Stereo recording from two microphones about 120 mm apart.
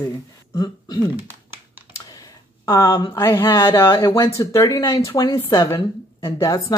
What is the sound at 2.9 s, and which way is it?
Speech, 35° left (ahead or behind).